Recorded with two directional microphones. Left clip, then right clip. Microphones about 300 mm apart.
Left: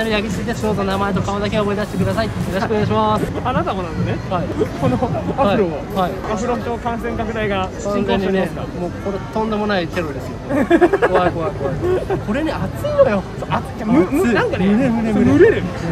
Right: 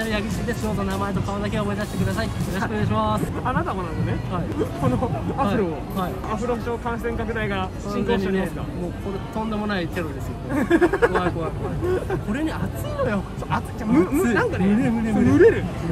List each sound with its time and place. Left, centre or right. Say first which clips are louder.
0.0 s speech: left 6 dB; centre
5.4 s speech: left 7 dB; centre
9.5 s speech: left 7 dB; centre